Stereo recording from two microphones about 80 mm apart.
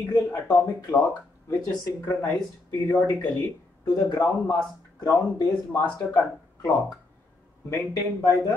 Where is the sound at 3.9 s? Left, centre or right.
Left.